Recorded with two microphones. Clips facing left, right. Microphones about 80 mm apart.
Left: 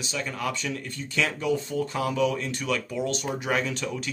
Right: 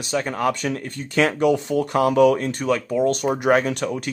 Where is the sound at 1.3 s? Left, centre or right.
Right.